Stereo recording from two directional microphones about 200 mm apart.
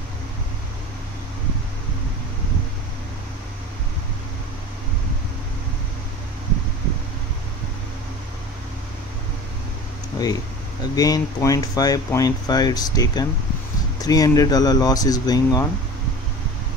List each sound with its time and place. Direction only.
10.1 s speech: 20° left (ahead or behind)